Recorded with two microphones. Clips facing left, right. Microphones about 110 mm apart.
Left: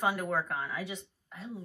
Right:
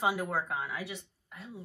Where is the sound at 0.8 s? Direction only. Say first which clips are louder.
Left 1 dB; 25° left (ahead or behind).